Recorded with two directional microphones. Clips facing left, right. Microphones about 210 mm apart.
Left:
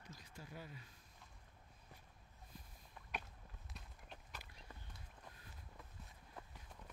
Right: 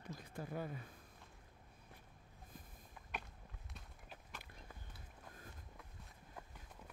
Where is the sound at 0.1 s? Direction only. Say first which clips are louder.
Right 9 dB; 55° right (ahead or behind).